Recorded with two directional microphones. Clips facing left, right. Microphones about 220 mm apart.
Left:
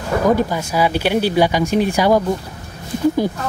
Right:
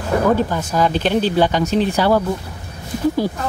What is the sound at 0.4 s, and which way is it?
Speech, 10° left (ahead or behind).